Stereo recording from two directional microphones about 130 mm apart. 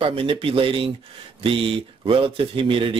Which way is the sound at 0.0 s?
45° right (ahead or behind).